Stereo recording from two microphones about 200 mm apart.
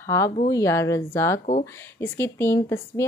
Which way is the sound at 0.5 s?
15° left (ahead or behind).